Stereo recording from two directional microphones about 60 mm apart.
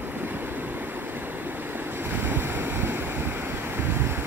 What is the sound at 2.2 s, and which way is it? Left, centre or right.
Waves, right.